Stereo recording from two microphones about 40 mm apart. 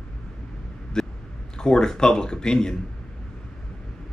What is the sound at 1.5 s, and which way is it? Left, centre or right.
Speech, centre.